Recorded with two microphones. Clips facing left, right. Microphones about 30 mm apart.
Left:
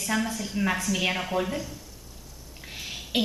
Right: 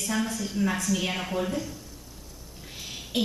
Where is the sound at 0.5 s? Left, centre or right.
Left.